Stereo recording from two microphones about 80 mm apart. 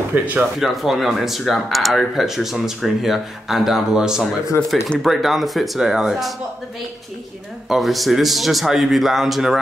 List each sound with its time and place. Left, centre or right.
0.1 s speech: right
0.6 s speech: centre
7.6 s speech: centre